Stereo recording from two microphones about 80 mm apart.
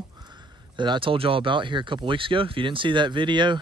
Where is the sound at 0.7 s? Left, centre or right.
Right.